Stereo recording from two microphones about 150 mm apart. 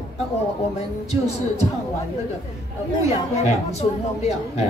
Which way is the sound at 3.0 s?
45° left (ahead or behind).